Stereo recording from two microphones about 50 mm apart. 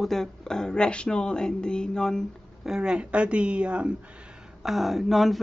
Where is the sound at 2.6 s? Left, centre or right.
Centre.